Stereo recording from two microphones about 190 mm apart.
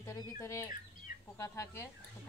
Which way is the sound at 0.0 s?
15° left (ahead or behind).